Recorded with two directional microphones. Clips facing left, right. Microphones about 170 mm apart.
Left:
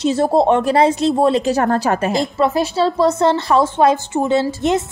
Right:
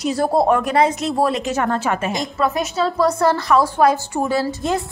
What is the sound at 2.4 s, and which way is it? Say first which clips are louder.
A woman's voice: left 3 dB; 30° left (ahead or behind).